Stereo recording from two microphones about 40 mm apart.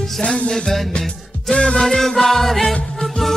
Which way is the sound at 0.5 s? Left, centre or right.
Centre.